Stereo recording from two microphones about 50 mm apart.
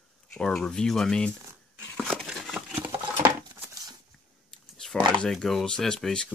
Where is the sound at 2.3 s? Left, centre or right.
Centre.